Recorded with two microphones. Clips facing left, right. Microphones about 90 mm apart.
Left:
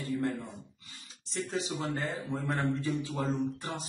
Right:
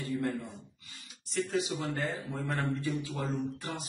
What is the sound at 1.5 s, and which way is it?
Speech, 30° left (ahead or behind).